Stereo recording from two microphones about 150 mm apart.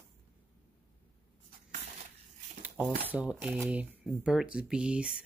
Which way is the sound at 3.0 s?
10° right (ahead or behind).